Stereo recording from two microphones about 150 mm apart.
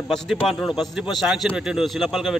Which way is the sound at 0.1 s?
Centre (ahead or behind).